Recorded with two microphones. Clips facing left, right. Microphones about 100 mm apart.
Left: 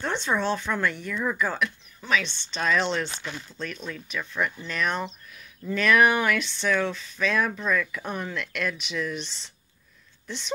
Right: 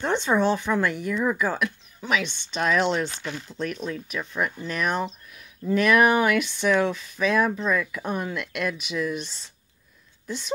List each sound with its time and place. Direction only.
0.0 s speech: 15° right (ahead or behind)